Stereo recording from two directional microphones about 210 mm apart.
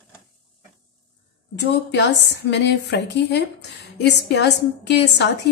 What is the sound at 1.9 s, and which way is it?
Speech, 55° left (ahead or behind).